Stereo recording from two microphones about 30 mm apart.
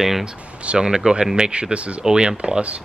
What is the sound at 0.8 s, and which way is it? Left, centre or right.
Speech, right.